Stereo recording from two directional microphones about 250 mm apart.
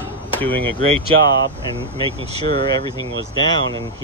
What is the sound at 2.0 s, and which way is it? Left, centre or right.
Speech, right.